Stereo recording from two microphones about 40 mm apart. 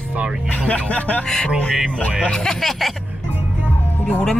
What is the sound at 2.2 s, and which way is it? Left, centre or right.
Speech, centre.